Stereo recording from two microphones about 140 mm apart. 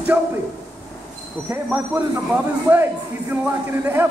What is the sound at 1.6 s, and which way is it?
A man's voice, 10° right (ahead or behind).